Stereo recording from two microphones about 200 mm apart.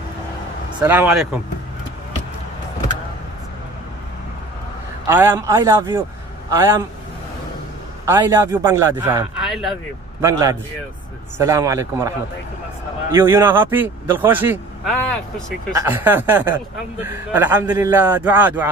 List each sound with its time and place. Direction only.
0.8 s speech: 10° right (ahead or behind)
5.0 s a man's voice: 10° right (ahead or behind)
8.0 s a man's voice: 15° right (ahead or behind); by 9.8 s centre (ahead or behind)
10.2 s a man's voice: 20° right (ahead or behind)
13.1 s a man's voice: 10° right (ahead or behind)
14.9 s speech: 5° left (ahead or behind)
15.7 s a man's voice: 10° right (ahead or behind)